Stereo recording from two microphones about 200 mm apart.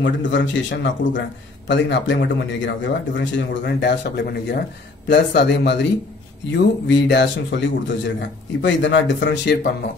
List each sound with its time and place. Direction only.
0.0 s a man's voice: 65° left (ahead or behind)